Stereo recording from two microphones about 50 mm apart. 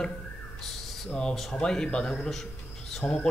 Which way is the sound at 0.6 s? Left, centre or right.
Centre.